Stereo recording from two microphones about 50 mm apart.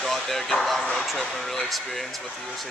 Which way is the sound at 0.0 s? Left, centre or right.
Centre.